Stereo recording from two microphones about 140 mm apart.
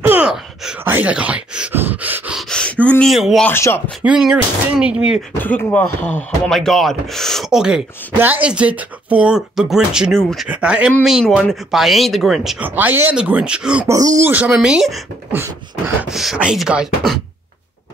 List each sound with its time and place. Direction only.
0.0 s speech: 10° right (ahead or behind)
2.5 s gasp: 10° left (ahead or behind)
3.1 s speech: centre (ahead or behind)
3.4 s speech: 15° left (ahead or behind)
4.0 s speech: 5° right (ahead or behind)
5.4 s speech: 10° left (ahead or behind)
6.5 s speech: centre (ahead or behind)
12.6 s speech: 15° right (ahead or behind)
13.8 s speech: 25° right (ahead or behind)
14.3 s speech: 10° right (ahead or behind)
16.0 s speech: 5° right (ahead or behind)